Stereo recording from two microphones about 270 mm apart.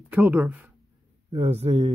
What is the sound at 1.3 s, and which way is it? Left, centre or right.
Speech, right.